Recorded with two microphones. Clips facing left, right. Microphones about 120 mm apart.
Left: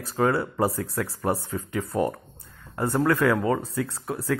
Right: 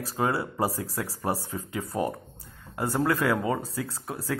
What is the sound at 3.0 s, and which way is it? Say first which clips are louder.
Speech: left 3 dB; 25° right (ahead or behind).